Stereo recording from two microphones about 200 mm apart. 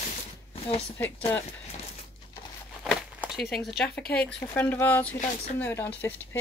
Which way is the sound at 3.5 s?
Centre (ahead or behind).